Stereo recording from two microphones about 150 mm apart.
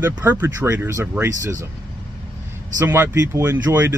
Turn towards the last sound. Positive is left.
turn(degrees=-15)  # may be behind; listen again after turning